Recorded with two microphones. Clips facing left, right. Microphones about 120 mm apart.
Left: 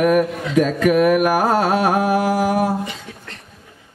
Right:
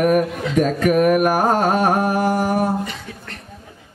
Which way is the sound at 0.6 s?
40° right (ahead or behind).